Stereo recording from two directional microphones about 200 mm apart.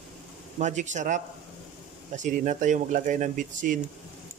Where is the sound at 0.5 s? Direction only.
35° right (ahead or behind).